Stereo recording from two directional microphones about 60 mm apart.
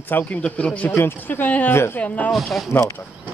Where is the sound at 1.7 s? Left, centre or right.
Left.